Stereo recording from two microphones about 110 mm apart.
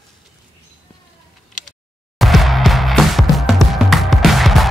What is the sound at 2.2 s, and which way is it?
Music, centre (ahead or behind).